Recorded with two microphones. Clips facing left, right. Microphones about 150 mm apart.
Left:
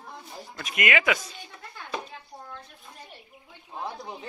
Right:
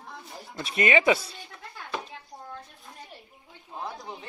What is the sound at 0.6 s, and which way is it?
Speech, 30° right (ahead or behind).